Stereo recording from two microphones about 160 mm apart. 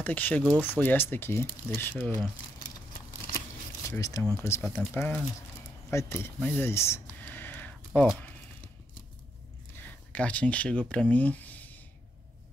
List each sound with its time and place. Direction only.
0.0 s speech: 10° left (ahead or behind)
3.9 s speech: 20° left (ahead or behind)
5.9 s a sound: 15° left (ahead or behind)
9.8 s speech: 10° left (ahead or behind)